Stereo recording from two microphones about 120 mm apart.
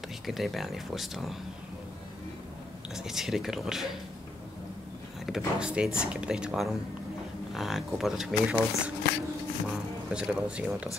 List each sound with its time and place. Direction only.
0.3 s speech: centre (ahead or behind)
2.9 s speech: 5° right (ahead or behind)
5.2 s speech: 5° right (ahead or behind)
10.0 s speech: 5° right (ahead or behind)